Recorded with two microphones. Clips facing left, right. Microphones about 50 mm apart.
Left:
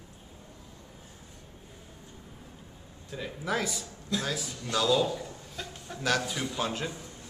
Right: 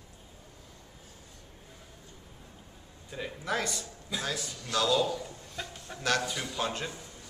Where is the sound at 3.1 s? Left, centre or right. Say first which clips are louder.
Left 1 dB; centre.